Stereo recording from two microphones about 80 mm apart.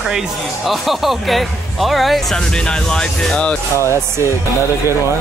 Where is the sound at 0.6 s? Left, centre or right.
Centre.